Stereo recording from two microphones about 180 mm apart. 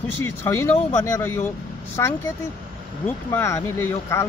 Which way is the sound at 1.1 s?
15° left (ahead or behind).